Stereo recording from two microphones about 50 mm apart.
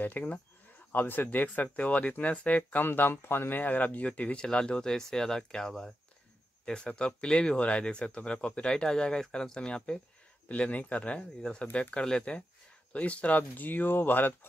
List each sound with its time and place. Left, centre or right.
0.0 s speech: left
0.9 s speech: left
2.8 s speech: left; by 9.9 s centre
10.5 s speech: left
11.1 s speech: centre
11.6 s speech: left